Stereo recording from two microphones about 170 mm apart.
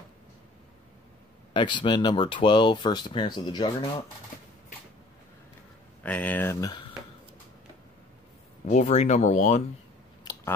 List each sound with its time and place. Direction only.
1.5 s speech: 30° left (ahead or behind)
6.0 s speech: 10° left (ahead or behind); by 6.9 s 25° left (ahead or behind)
8.6 s speech: 45° left (ahead or behind)
10.3 s biting: 20° left (ahead or behind)